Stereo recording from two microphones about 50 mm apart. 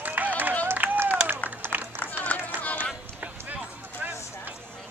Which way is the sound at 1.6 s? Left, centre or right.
Right.